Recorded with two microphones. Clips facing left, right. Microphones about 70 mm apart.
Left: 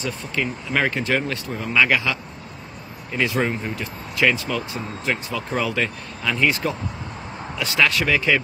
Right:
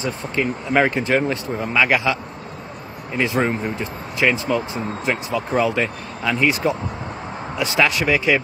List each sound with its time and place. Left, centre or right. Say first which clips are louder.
0.0 s a man's voice: right 3 dB; right